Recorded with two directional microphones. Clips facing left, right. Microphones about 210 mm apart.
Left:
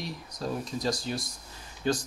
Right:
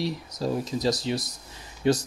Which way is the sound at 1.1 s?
90° right.